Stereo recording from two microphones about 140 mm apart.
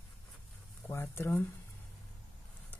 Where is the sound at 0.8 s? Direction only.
15° left (ahead or behind).